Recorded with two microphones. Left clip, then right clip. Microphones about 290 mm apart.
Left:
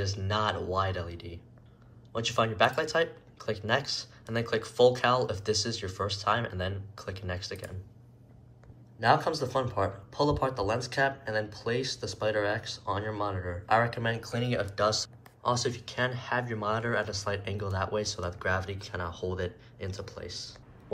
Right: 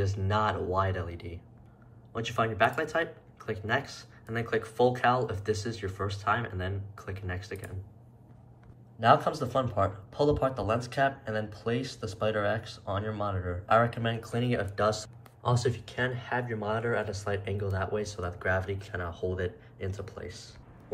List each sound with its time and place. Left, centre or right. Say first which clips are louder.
0.0 s speech: right 1 dB; centre
9.0 s speech: right 2 dB; centre